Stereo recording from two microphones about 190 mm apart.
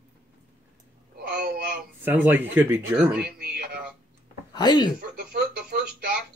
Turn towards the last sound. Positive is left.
turn(degrees=-55)  # may be behind; listen again after turning